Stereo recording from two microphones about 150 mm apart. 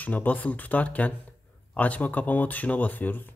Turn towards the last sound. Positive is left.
turn(degrees=10)  # may be behind; listen again after turning